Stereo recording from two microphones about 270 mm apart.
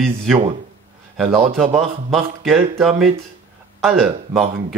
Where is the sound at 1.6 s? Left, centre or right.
Right.